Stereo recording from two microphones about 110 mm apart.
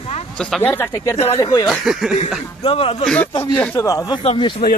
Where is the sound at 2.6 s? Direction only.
60° left (ahead or behind).